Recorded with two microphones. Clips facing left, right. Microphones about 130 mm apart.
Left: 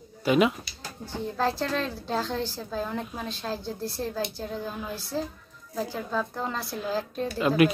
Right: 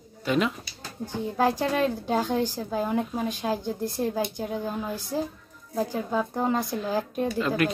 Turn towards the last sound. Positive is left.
turn(degrees=10)  # may be behind; listen again after turning